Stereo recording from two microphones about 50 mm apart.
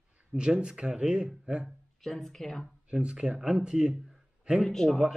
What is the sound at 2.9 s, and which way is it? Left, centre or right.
A man's voice, right.